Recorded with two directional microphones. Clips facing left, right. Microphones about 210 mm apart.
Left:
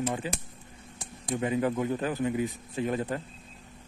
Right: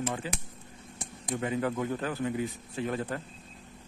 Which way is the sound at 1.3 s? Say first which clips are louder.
Left 3 dB; 15° left (ahead or behind).